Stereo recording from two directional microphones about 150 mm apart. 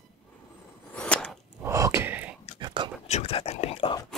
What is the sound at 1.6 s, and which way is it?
Gasp, 20° right (ahead or behind).